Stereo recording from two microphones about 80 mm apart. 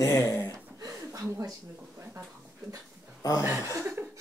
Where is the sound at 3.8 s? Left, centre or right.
Right.